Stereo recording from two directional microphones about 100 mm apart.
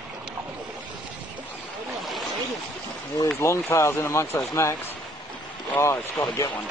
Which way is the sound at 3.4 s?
25° left (ahead or behind).